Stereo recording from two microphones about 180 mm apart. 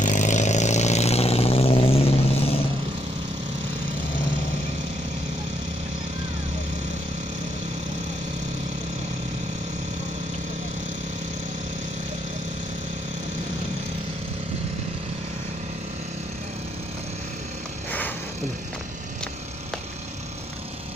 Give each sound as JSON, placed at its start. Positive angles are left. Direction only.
{"t": 0.0, "sound": "vehicle", "side_deg": 45}